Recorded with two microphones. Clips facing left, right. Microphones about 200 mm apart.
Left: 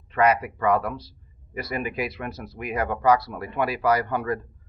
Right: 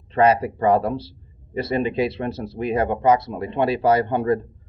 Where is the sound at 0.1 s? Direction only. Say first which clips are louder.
Right 4 dB; 30° right (ahead or behind).